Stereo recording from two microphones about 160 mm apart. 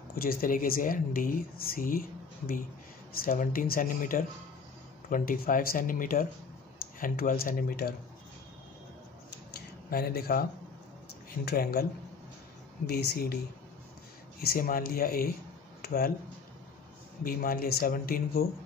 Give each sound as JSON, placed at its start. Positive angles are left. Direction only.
{"t": 0.1, "sound": "speech", "side_deg": 65}
{"t": 9.8, "sound": "speech", "side_deg": 70}
{"t": 11.4, "sound": "speech", "side_deg": 75}
{"t": 12.8, "sound": "speech", "side_deg": 85}
{"t": 14.4, "sound": "speech", "side_deg": 65}
{"t": 15.8, "sound": "a sound", "side_deg": 70}
{"t": 17.2, "sound": "speech", "side_deg": 65}